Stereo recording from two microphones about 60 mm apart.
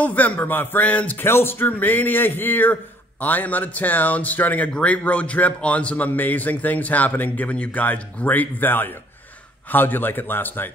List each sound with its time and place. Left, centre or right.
0.0 s a man's voice: left
1.2 s a man's voice: left